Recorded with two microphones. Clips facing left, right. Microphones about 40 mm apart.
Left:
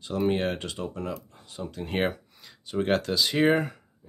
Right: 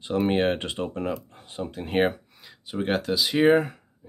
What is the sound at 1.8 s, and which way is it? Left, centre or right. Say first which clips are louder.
Speech: right 4 dB; centre.